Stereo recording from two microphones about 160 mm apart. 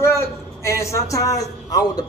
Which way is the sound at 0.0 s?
15° left (ahead or behind).